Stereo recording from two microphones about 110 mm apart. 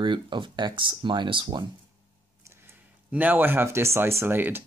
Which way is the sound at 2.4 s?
20° right (ahead or behind).